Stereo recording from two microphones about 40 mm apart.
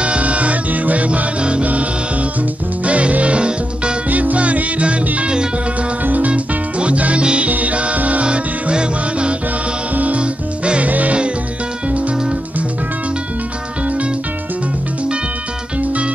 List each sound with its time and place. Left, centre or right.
0.0 s music: right
4.1 s music: right
7.4 s music: right
10.9 s music: right
13.8 s music: right